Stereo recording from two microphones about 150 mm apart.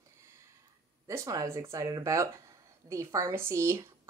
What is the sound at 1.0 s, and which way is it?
Speech, 20° right (ahead or behind).